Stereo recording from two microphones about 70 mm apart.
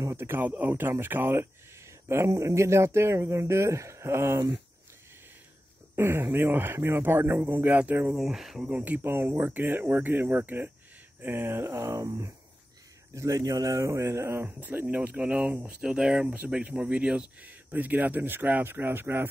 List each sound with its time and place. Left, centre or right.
0.0 s speech: right
5.9 s speech: right
8.1 s speech: centre
8.6 s speech: right
11.8 s speech: right
13.1 s speech: right
14.7 s speech: right
15.8 s speech: centre; by 19.2 s right